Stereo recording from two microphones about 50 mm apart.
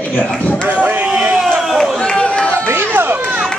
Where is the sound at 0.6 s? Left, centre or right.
Right.